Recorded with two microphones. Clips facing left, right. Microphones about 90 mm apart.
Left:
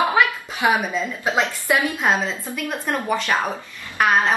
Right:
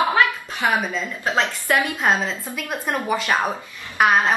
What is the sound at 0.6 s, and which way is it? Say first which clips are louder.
A woman's voice: left 2 dB; 15° left (ahead or behind).